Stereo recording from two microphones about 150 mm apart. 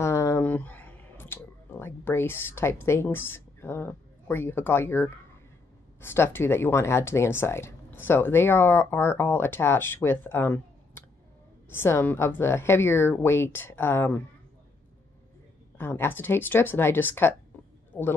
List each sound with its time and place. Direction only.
0.0 s a sound: 20° left (ahead or behind)
5.9 s speech: 15° left (ahead or behind)
15.8 s speech: 15° left (ahead or behind)